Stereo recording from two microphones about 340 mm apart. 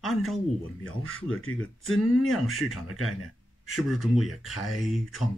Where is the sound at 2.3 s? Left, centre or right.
Centre.